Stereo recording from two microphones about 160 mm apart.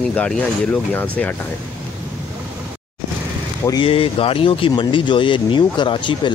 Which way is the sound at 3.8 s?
35° left (ahead or behind).